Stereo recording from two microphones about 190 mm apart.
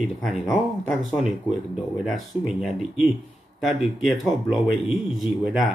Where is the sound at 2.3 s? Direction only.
10° right (ahead or behind).